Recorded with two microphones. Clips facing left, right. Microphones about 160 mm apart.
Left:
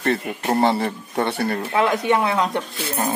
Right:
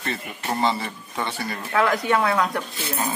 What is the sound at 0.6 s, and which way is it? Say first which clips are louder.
Speech: left 4 dB; 60° left (ahead or behind).